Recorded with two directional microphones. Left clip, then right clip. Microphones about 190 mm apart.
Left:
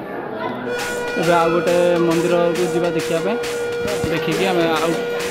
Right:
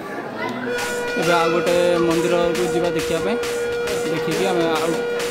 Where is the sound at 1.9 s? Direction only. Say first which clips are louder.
Left 1 dB; 5° right (ahead or behind).